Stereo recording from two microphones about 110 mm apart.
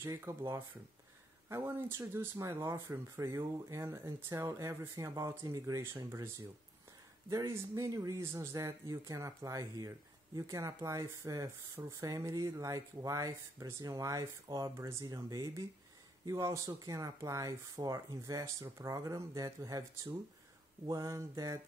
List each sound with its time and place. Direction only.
0.0 s speech: 25° right (ahead or behind)
1.5 s speech: 20° right (ahead or behind)
7.2 s speech: 25° right (ahead or behind)
15.0 s a sound: 35° right (ahead or behind)
16.3 s speech: 25° right (ahead or behind)
20.8 s a sound: 35° right (ahead or behind)